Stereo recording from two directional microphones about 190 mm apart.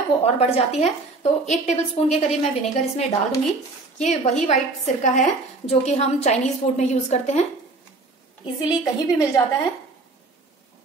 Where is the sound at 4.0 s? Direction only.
35° left (ahead or behind).